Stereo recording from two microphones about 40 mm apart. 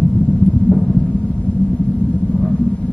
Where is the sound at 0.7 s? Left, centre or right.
Left.